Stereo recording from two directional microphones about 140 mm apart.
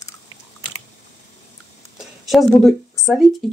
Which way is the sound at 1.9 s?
Centre (ahead or behind).